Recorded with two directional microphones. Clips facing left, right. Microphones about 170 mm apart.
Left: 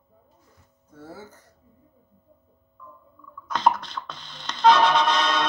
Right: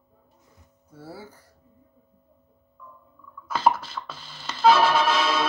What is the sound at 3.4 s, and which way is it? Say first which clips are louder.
Music: even; 5° right (ahead or behind).